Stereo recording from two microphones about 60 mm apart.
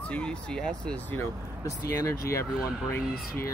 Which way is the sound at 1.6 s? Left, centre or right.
Left.